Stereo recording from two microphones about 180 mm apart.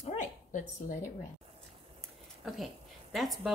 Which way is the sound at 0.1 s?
45° left (ahead or behind).